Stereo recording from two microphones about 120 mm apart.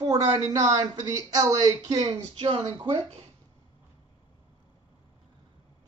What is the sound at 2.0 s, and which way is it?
Speech, 50° right (ahead or behind).